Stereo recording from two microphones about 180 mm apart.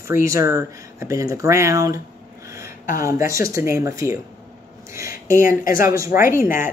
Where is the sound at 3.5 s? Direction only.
15° right (ahead or behind).